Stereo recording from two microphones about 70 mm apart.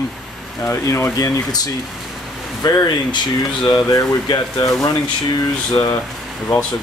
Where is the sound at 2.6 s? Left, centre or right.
Left.